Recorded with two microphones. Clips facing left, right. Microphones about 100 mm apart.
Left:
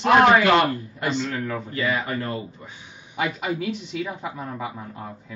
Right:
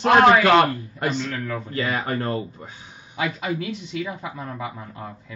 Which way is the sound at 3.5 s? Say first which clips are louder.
Left 1 dB; 5° left (ahead or behind).